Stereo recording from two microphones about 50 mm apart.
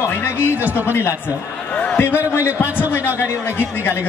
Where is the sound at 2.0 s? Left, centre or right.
Left.